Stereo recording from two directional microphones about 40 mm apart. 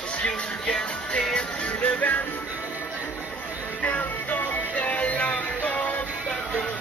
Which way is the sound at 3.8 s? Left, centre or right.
Left.